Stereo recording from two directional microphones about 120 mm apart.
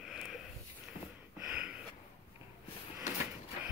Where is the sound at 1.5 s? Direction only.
5° right (ahead or behind).